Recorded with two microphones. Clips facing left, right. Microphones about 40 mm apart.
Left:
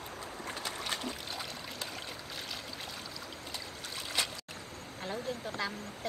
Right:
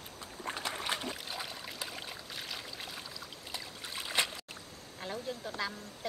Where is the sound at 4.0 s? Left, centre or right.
Centre.